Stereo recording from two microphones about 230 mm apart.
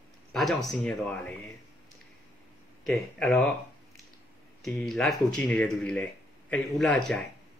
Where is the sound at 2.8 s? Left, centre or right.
Centre.